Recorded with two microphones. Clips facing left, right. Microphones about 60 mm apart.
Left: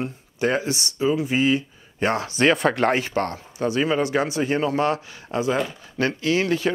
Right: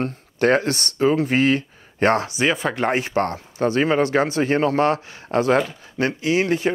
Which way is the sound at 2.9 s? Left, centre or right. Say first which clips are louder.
Right 2 dB; right.